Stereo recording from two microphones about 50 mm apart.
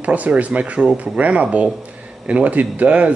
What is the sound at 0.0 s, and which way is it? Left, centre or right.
Speech, right.